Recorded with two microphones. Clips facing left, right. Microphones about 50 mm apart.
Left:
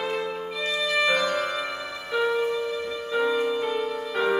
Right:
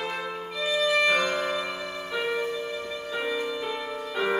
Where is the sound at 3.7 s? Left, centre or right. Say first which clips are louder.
Left 4 dB; centre.